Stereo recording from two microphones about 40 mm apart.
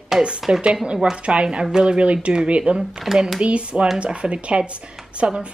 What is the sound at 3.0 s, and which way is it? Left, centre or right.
Speech, centre.